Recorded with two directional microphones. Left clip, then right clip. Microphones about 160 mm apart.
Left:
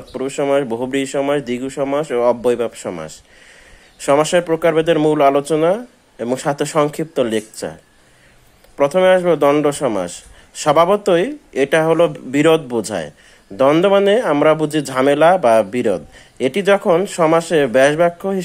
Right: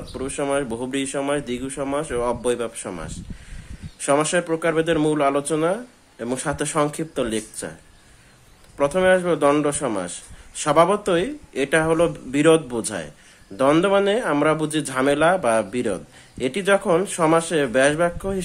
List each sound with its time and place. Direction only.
0.1 s speech: 30° left (ahead or behind)
8.7 s speech: 30° left (ahead or behind)